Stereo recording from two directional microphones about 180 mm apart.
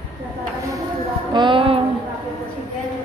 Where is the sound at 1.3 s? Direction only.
25° right (ahead or behind).